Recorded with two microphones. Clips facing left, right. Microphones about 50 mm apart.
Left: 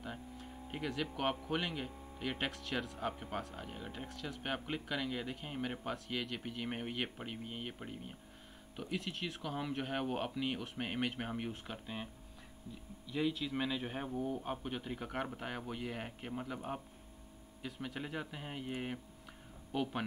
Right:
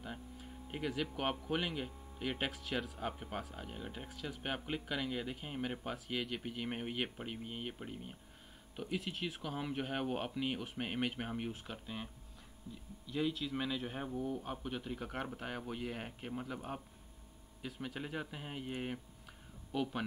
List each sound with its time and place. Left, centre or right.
0.0 s a sound: centre
1.5 s speech: centre
13.1 s speech: centre